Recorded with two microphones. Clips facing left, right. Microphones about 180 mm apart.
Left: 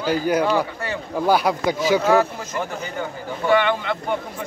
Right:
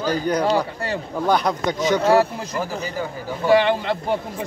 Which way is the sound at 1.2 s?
5° left (ahead or behind).